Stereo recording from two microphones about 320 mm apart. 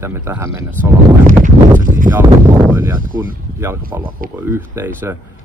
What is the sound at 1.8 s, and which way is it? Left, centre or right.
Speech, right.